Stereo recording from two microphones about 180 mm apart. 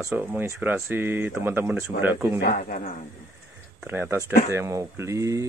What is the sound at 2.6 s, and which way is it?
Speech, 45° left (ahead or behind).